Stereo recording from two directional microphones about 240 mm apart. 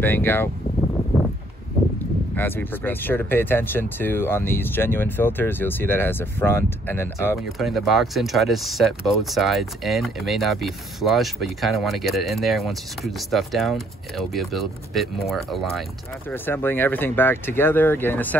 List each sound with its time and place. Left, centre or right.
0.0 s speech: centre
2.3 s speech: centre